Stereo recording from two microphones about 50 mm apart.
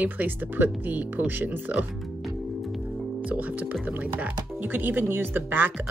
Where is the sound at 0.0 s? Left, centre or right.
Right.